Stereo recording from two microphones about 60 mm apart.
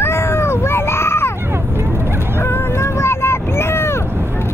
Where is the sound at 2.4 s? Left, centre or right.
Left.